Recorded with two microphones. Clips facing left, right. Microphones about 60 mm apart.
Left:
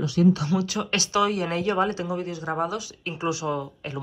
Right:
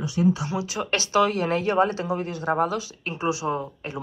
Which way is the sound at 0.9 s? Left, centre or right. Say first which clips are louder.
Right 3 dB; right.